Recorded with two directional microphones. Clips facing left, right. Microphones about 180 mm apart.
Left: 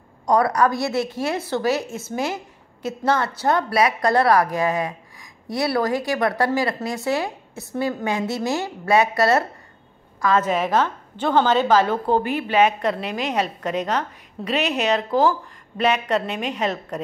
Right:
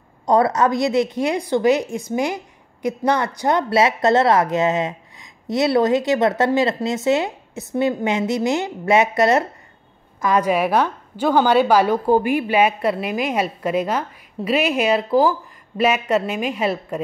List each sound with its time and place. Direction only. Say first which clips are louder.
0.3 s a woman's voice: right 2 dB; 25° right (ahead or behind); by 17.0 s 10° right (ahead or behind)